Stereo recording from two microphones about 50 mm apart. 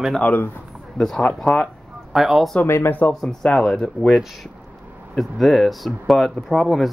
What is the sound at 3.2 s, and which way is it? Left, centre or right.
Speech, centre.